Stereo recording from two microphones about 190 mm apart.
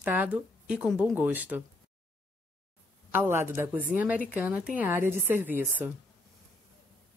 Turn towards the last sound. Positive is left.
turn(degrees=-10)  # may be behind; listen again after turning